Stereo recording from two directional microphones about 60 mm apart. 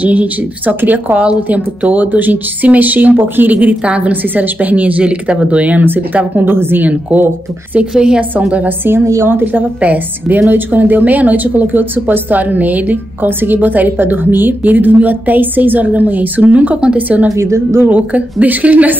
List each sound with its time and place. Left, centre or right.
0.0 s speech: right
6.9 s speech: right
7.9 s a woman's voice: centre
8.2 s speech: right
9.0 s a woman's voice: right
9.3 s a woman's voice: right
17.4 s a woman's voice: right
17.8 s speech: right